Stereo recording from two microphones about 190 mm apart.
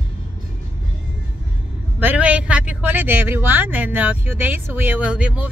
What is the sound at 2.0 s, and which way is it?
A man's voice, 10° right (ahead or behind).